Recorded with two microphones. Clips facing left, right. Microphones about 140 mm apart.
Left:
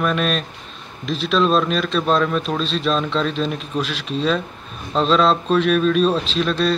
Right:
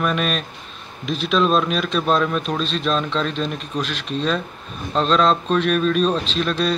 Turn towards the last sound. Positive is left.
turn(degrees=0)  # may be behind; listen again after turning